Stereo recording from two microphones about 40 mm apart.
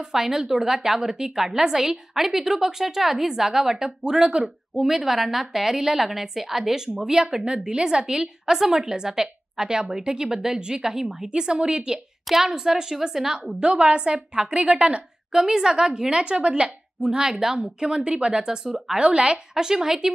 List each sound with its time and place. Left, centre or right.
0.0 s a woman's voice: centre
4.7 s a woman's voice: centre
11.2 s a woman's voice: right
13.6 s a woman's voice: right
15.3 s a woman's voice: centre
19.5 s a woman's voice: centre